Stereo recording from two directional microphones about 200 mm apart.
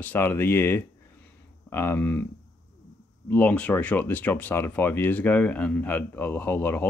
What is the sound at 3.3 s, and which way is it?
Speech, 5° left (ahead or behind).